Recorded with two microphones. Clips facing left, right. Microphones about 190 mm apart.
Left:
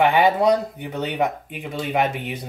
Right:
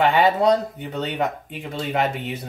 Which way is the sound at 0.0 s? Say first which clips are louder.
Left 1 dB; 15° left (ahead or behind).